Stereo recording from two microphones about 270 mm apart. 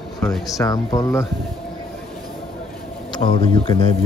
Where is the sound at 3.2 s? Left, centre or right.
Centre.